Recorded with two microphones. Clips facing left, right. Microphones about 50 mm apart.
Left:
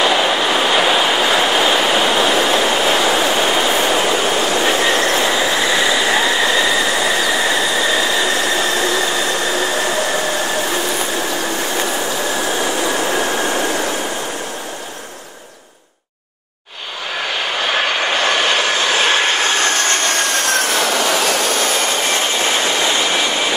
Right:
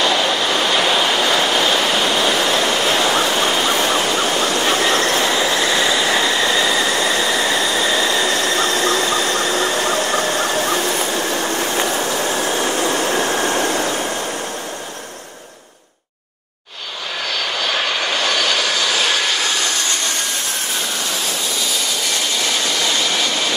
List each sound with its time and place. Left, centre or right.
0.0 s vehicle: centre
3.3 s a sound: centre
4.6 s train: centre
5.3 s train: centre
11.7 s train: centre
17.6 s vehicle: left